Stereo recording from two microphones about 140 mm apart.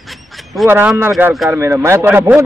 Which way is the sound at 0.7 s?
15° right (ahead or behind).